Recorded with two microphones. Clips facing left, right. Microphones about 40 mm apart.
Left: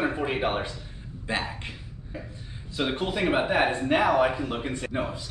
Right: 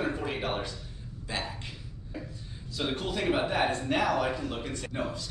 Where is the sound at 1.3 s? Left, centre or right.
Left.